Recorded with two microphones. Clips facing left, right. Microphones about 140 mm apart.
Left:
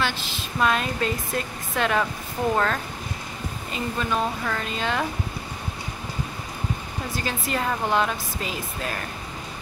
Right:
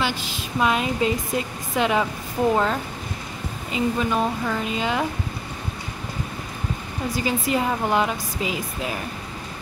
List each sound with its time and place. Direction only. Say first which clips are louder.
0.0 s a woman's voice: right 2 dB; 15° right (ahead or behind)
7.1 s a woman's voice: right 6 dB; 15° right (ahead or behind)